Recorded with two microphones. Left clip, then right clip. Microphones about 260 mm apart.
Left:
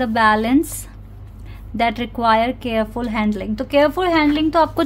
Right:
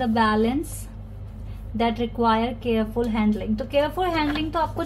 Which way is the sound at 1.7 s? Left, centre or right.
Left.